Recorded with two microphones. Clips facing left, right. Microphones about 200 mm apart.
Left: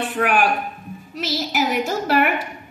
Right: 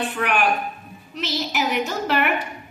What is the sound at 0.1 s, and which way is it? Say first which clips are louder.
A woman's voice: left 5 dB; 45° left (ahead or behind).